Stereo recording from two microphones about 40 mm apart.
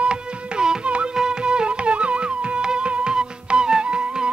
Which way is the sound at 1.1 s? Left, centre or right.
Right.